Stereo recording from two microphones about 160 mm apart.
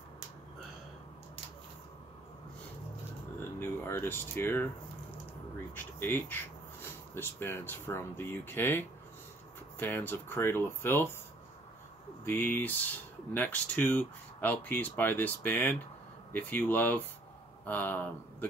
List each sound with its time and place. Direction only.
3.3 s a sound: 15° left (ahead or behind)
5.8 s speech: 15° left (ahead or behind)
12.3 s speech: 15° left (ahead or behind)